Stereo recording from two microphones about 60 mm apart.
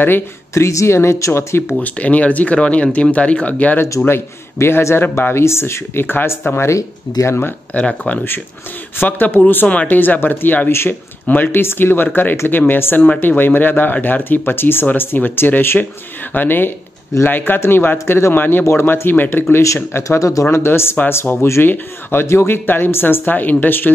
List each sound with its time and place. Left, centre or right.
0.6 s speech: left
1.8 s speech: left
4.6 s speech: left
7.7 s speech: left
8.9 s speech: left
9.7 s speech: left
10.7 s speech: left
11.2 s speech: left
19.6 s speech: left
20.5 s speech: left
22.7 s speech: left